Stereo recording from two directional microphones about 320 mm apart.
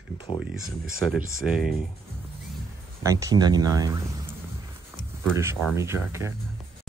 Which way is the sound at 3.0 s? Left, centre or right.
Centre.